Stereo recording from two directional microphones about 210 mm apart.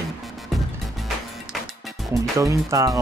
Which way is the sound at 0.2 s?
Centre (ahead or behind).